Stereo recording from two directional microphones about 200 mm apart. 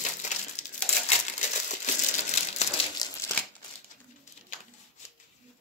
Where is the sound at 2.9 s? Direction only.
15° left (ahead or behind).